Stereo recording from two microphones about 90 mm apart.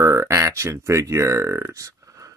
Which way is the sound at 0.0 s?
30° right (ahead or behind).